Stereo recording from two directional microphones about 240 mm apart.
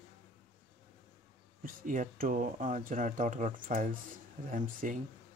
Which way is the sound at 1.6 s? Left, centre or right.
Right.